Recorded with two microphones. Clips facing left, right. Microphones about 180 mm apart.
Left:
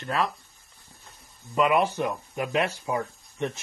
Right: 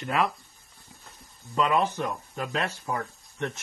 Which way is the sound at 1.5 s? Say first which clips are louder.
Left 2 dB; 10° left (ahead or behind).